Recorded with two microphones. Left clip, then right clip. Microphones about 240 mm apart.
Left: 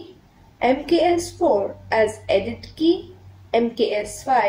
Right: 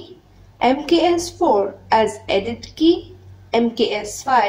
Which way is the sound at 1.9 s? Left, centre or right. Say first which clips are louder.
Right 2 dB; right.